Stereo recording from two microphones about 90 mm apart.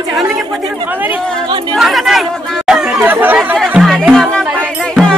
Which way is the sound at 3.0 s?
20° right (ahead or behind).